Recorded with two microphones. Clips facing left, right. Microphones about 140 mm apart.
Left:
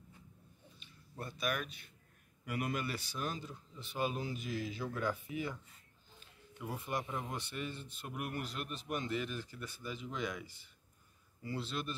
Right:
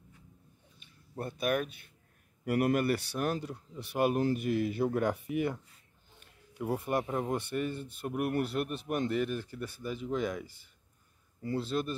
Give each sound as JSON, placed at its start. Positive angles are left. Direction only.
{"t": 0.7, "sound": "speech", "side_deg": -50}
{"t": 6.6, "sound": "speech", "side_deg": -55}